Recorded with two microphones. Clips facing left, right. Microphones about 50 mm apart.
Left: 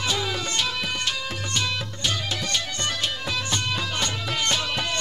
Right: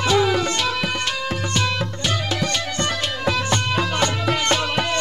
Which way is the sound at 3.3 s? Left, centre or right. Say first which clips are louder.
Right 9 dB; right.